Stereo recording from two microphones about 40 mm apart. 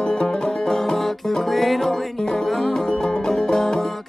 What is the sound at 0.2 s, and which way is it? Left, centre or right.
Music, centre.